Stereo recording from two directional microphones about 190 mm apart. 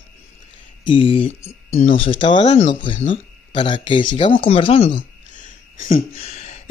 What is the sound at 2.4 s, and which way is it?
Speech, 35° left (ahead or behind).